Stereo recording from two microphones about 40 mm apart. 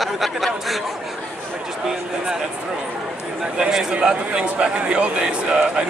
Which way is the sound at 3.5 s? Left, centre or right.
Centre.